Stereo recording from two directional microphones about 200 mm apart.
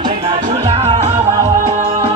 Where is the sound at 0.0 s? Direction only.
25° right (ahead or behind).